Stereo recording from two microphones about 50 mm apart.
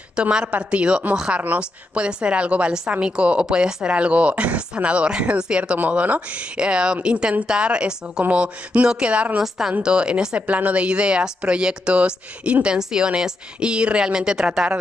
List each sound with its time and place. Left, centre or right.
0.1 s a woman's voice: centre
5.8 s a woman's voice: right
9.4 s a woman's voice: centre